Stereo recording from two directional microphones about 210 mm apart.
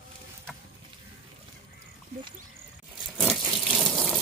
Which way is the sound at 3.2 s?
Centre (ahead or behind).